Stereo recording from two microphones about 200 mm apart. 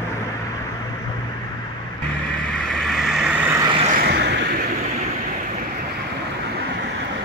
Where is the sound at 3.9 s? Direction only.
55° right (ahead or behind).